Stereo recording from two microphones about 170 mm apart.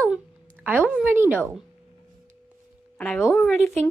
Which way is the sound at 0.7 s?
10° right (ahead or behind).